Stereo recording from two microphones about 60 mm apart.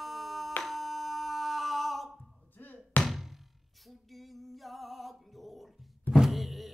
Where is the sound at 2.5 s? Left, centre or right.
Left.